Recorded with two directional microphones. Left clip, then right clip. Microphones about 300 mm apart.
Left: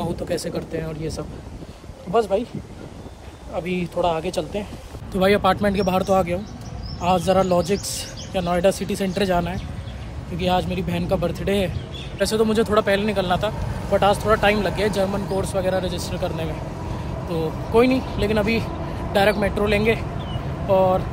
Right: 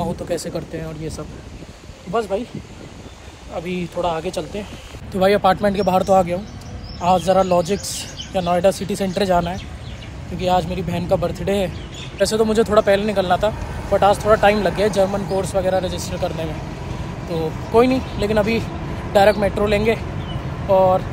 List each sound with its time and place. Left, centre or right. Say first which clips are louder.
0.0 s speech: right 2 dB; centre
3.5 s a man's voice: even; centre